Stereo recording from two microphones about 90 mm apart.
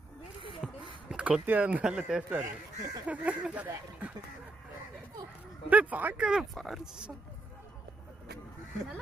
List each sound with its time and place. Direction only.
0.6 s speech: 10° right (ahead or behind)
5.7 s speech: 15° right (ahead or behind)
6.5 s speech: centre (ahead or behind)